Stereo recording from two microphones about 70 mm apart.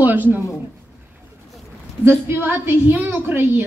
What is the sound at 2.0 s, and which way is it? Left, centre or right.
A woman's voice, right.